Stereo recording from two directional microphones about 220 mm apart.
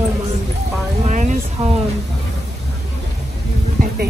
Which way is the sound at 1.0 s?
35° right (ahead or behind).